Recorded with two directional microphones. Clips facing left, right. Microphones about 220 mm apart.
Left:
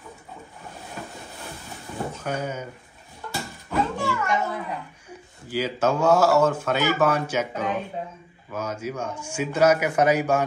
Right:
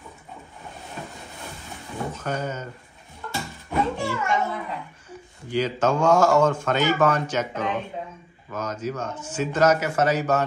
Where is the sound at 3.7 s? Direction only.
15° right (ahead or behind).